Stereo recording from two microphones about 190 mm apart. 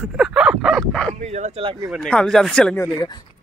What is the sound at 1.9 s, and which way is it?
Speech, centre (ahead or behind).